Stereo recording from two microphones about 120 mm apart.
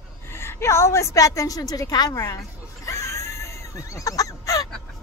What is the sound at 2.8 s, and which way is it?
Fowl, 25° left (ahead or behind).